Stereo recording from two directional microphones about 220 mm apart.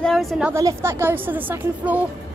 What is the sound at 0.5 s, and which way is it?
A woman's voice, 15° right (ahead or behind).